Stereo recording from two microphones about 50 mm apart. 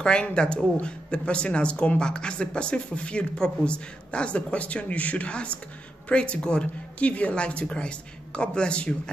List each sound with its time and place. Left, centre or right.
0.0 s speech: centre